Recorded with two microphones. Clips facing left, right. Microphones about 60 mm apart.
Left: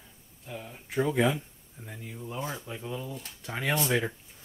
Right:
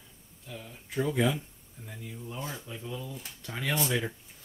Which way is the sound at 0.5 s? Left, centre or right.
Left.